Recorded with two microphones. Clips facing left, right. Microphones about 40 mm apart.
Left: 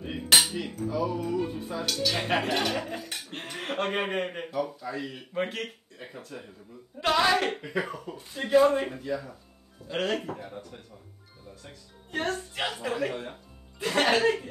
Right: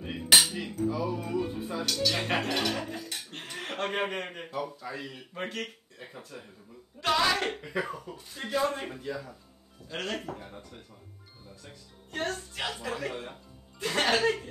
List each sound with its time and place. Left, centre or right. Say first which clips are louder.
0.0 s cutlery: even; centre
0.8 s speech: left 2 dB; centre
1.9 s speech: left 2 dB; centre
4.6 s speech: left 4 dB; centre
5.3 s speech: left 5 dB; centre
10.2 s speech: left 3 dB; centre
11.6 s speech: left 2 dB; centre